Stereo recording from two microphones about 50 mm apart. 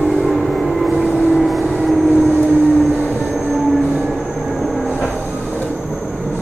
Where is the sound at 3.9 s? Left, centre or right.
Centre.